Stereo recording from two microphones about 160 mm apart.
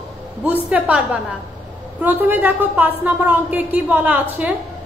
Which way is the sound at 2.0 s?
10° right (ahead or behind).